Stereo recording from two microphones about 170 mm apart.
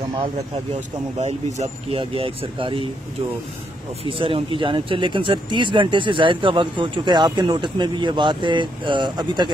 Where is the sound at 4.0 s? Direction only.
30° right (ahead or behind).